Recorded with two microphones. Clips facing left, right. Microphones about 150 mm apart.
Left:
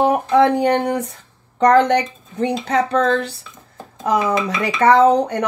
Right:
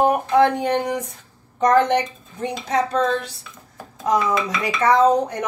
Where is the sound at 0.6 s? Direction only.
65° left (ahead or behind).